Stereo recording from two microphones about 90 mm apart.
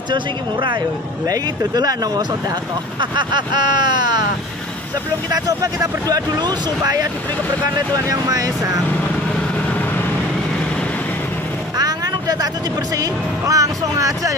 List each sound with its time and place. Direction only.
0.1 s speech: 60° right (ahead or behind)
1.2 s speech: 45° right (ahead or behind)
3.0 s speech: 60° right (ahead or behind)
5.3 s speech: 45° right (ahead or behind)
9.7 s vehicle: 20° left (ahead or behind)
11.7 s vehicle: 45° right (ahead or behind)
12.9 s speech: 40° right (ahead or behind)